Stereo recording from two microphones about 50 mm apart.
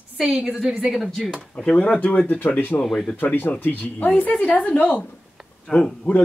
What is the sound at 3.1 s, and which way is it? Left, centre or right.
Speech, left.